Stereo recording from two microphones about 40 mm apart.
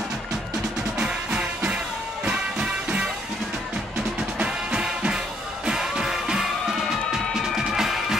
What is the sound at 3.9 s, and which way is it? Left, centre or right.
Music, right.